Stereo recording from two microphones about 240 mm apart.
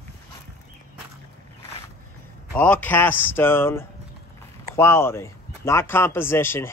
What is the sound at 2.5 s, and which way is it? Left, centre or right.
Speech, centre.